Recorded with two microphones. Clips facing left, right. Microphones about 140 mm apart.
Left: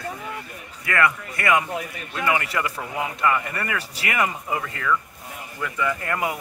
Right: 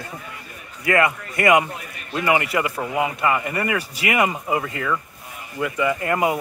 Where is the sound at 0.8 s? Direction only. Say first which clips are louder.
Right 3 dB; 20° right (ahead or behind).